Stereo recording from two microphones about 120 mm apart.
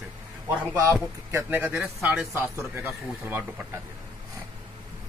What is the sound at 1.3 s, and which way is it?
A man's voice, 20° right (ahead or behind).